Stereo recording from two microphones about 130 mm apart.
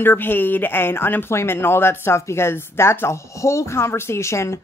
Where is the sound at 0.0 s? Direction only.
15° left (ahead or behind).